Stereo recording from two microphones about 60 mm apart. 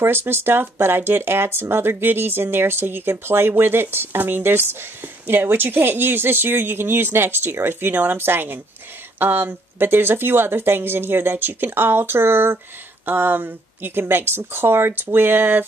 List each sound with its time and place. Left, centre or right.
0.0 s speech: right